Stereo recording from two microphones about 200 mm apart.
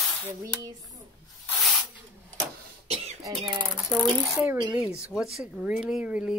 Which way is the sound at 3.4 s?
25° right (ahead or behind).